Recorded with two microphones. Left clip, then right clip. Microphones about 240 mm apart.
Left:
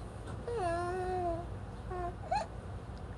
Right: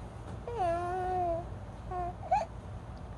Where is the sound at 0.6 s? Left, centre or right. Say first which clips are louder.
Right 4 dB; centre.